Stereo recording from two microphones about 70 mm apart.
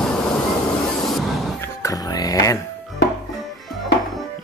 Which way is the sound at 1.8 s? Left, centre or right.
Left.